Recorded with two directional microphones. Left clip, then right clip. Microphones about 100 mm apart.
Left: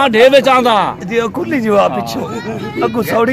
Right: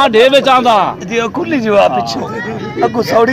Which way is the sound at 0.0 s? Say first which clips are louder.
Even; 90° left.